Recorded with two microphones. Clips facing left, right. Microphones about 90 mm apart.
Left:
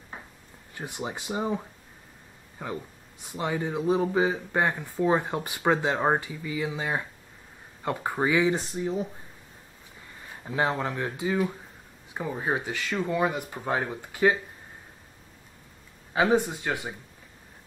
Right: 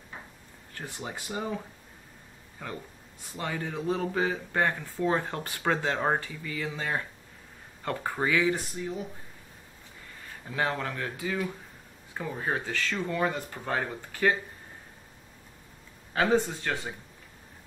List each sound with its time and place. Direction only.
0.7 s speech: 20° left (ahead or behind)
10.2 s speech: 20° left (ahead or behind)
16.1 s speech: 15° left (ahead or behind)